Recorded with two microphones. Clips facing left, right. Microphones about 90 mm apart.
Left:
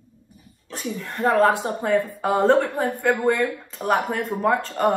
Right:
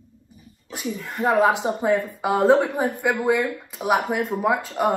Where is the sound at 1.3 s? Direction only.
15° right (ahead or behind).